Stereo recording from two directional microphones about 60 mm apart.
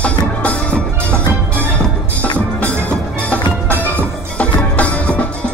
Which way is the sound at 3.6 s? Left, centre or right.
Right.